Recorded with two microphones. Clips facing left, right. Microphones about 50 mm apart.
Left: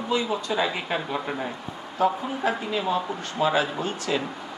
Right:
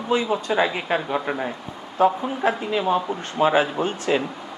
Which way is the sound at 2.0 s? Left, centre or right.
Right.